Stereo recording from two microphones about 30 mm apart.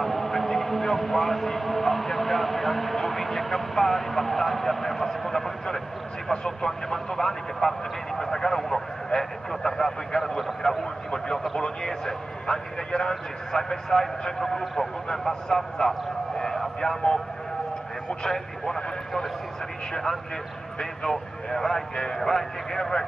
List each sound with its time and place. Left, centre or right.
0.0 s a man's voice: centre
16.3 s a sound: centre
18.2 s speech: centre
19.9 s a man's voice: centre